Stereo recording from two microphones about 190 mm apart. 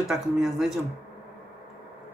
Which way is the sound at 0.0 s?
Centre (ahead or behind).